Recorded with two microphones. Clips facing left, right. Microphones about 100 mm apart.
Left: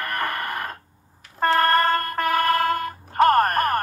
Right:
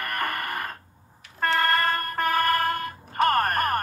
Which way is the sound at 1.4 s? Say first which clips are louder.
Left 5 dB; 35° left (ahead or behind).